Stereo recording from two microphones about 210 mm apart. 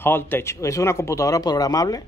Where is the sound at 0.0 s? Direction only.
10° left (ahead or behind).